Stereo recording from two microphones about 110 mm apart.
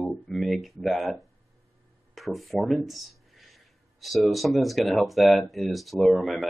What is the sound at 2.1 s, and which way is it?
Speech, centre (ahead or behind).